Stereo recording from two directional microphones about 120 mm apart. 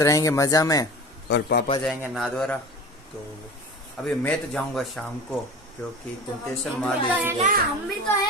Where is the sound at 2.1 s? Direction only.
Centre (ahead or behind).